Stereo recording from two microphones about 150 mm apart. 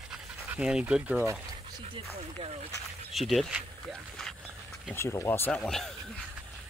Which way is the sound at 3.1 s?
Centre (ahead or behind).